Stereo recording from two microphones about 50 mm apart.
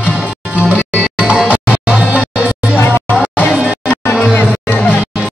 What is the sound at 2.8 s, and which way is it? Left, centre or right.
Music, left.